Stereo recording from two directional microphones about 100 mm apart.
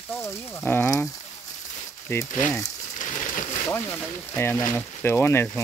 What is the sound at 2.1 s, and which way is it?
Speech, 25° left (ahead or behind).